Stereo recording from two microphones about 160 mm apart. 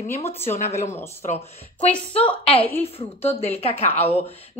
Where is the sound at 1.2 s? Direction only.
40° left (ahead or behind).